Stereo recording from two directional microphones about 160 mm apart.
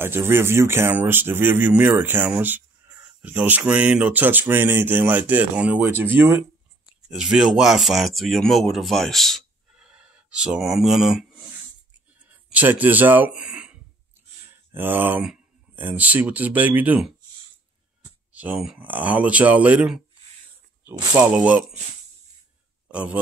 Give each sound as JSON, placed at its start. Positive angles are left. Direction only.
{"t": 0.0, "sound": "speech", "side_deg": -15}
{"t": 18.3, "sound": "speech", "side_deg": -10}
{"t": 22.8, "sound": "a man's voice", "side_deg": -5}